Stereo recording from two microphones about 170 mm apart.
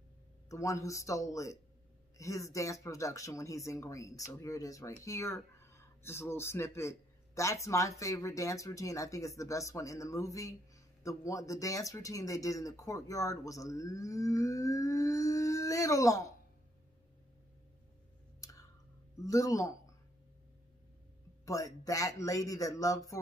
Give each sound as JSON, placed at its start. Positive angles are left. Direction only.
{"t": 0.5, "sound": "speech", "side_deg": 20}
{"t": 18.4, "sound": "a sound", "side_deg": 20}
{"t": 19.2, "sound": "speech", "side_deg": 20}
{"t": 21.5, "sound": "speech", "side_deg": 20}